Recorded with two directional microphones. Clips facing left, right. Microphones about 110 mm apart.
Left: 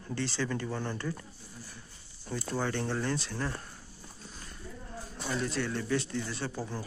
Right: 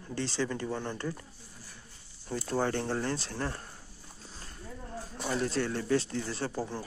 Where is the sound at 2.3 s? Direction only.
40° right (ahead or behind).